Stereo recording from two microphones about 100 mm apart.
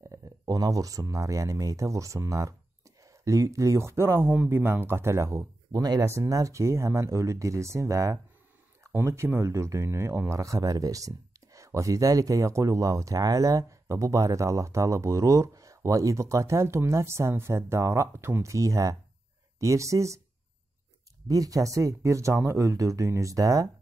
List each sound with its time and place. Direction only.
0.1 s speech: 35° right (ahead or behind)
5.7 s speech: 40° right (ahead or behind)
21.3 s speech: 35° right (ahead or behind)